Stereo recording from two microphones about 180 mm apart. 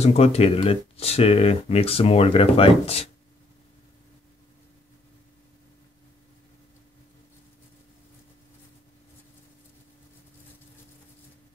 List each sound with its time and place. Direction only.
0.0 s speech: 35° left (ahead or behind)